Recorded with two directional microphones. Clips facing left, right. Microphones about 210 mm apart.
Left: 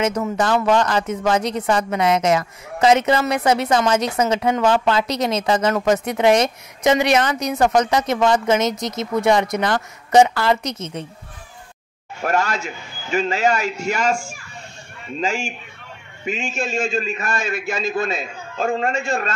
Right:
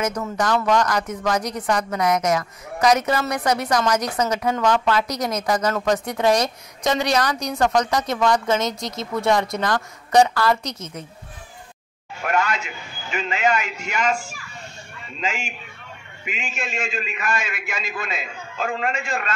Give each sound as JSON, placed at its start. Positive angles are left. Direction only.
{"t": 0.0, "sound": "a woman's voice", "side_deg": 25}
{"t": 12.2, "sound": "speech", "side_deg": 40}
{"t": 15.1, "sound": "a woman's voice", "side_deg": 30}
{"t": 16.6, "sound": "a woman's voice", "side_deg": 25}
{"t": 18.7, "sound": "a man's voice", "side_deg": 45}
{"t": 18.9, "sound": "a woman's voice", "side_deg": 25}